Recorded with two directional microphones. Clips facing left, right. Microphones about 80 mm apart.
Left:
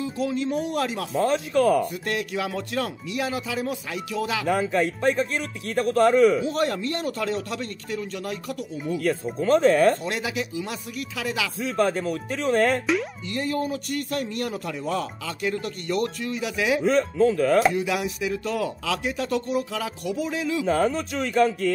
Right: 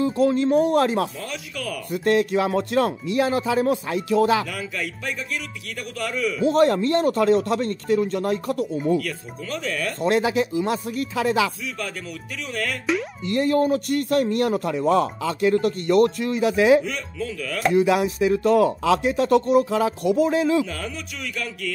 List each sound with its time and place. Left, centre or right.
0.2 s speech: right
1.1 s a man's voice: left
1.9 s speech: right
4.5 s a man's voice: left
6.4 s speech: right
9.0 s a man's voice: left
10.0 s speech: right
11.6 s a man's voice: left
13.3 s speech: right
16.8 s a man's voice: left
17.8 s speech: right
20.6 s a man's voice: left